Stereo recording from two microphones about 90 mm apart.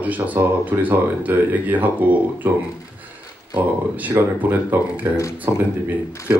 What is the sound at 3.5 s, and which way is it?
Speech, 20° right (ahead or behind).